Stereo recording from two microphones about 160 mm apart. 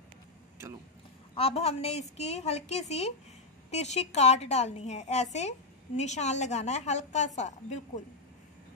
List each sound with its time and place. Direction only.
1.3 s a woman's voice: 40° left (ahead or behind)